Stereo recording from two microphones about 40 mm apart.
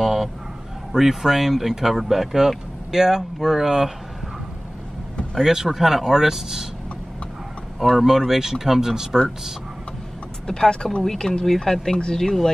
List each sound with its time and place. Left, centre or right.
0.0 s dog: centre
0.9 s speech: centre
5.4 s speech: centre
7.9 s speech: centre
10.4 s speech: centre